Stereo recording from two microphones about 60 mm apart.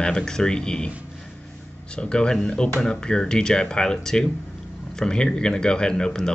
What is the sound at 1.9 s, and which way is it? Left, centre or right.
Speech, centre.